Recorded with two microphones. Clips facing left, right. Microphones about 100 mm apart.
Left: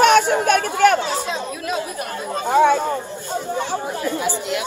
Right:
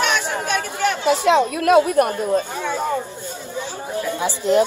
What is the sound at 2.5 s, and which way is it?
Speech, 75° left (ahead or behind).